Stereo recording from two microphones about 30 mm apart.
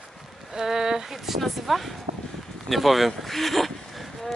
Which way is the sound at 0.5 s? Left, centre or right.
Centre.